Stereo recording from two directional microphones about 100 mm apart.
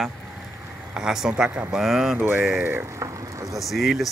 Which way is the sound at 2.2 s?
20° right (ahead or behind).